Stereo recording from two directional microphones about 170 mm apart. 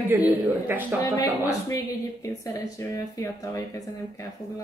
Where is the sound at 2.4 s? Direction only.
20° left (ahead or behind).